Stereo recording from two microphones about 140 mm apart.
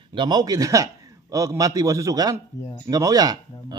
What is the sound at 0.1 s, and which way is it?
A man's voice, 35° right (ahead or behind).